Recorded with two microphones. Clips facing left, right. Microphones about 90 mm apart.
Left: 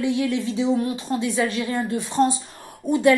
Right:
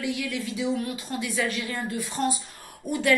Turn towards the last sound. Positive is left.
turn(degrees=20)  # may be behind; listen again after turning